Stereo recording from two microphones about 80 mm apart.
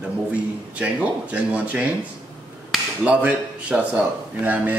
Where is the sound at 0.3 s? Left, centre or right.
Centre.